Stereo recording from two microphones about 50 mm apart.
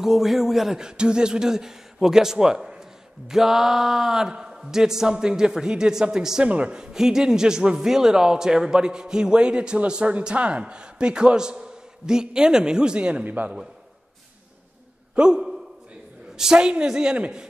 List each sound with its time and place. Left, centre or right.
0.0 s speech: centre
13.2 s a man's voice: right
15.1 s speech: centre